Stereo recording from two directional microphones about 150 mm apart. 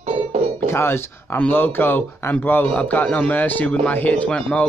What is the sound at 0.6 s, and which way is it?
Speech, 15° left (ahead or behind).